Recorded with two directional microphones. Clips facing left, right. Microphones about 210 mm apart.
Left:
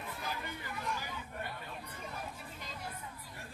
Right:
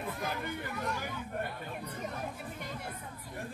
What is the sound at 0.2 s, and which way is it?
Chatter, 55° right (ahead or behind).